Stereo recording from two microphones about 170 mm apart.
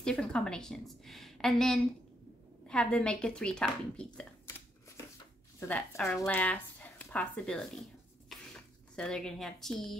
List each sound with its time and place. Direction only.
0.0 s a woman's voice: 5° left (ahead or behind)
5.6 s speech: 10° left (ahead or behind)
8.3 s a sound: 5° left (ahead or behind)